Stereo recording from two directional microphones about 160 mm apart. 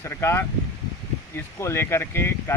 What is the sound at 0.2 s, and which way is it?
Speech, 15° left (ahead or behind).